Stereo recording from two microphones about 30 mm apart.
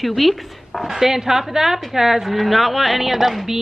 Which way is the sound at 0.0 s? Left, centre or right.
Centre.